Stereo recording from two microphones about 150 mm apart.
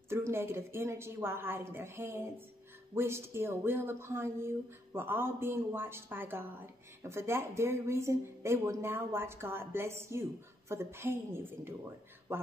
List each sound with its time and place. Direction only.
0.1 s speech: 15° right (ahead or behind)